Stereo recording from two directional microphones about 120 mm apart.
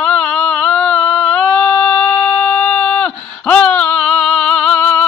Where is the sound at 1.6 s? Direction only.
25° left (ahead or behind).